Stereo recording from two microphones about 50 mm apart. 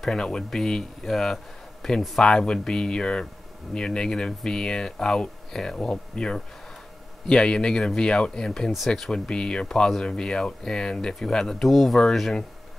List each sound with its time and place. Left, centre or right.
0.0 s speech: centre
9.1 s speech: centre